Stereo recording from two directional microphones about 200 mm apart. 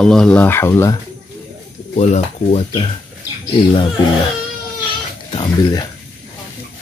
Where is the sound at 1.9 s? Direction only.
35° left (ahead or behind).